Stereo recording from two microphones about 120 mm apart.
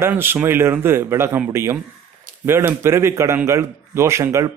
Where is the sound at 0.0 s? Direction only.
20° right (ahead or behind).